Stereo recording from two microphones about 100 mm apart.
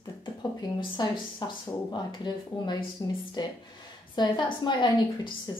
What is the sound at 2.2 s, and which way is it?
A woman's voice, 50° left (ahead or behind).